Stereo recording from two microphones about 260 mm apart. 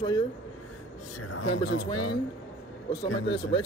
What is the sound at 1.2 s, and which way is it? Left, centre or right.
Speech, left.